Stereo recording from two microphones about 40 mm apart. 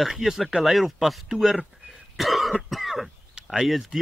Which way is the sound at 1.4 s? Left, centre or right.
Centre.